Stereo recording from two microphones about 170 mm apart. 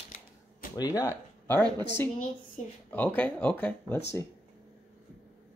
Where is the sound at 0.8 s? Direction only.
20° left (ahead or behind).